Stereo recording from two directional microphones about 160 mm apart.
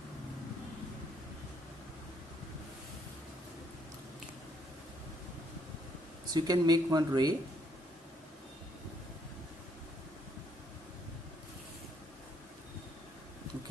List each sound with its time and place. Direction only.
6.3 s speech: 25° right (ahead or behind)